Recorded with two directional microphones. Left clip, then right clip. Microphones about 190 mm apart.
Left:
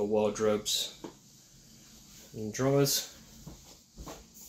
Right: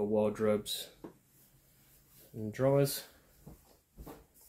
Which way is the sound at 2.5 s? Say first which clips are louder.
Left 1 dB; 5° right (ahead or behind).